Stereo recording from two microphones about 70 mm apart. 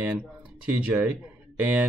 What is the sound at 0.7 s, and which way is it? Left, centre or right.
Speech, centre.